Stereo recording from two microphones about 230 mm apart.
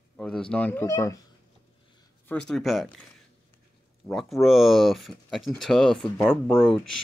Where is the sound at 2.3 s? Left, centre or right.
Centre.